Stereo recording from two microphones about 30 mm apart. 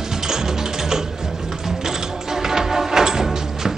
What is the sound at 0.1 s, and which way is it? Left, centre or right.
Music, centre.